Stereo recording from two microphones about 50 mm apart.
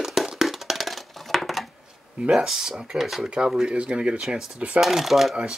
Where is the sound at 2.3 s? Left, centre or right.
Centre.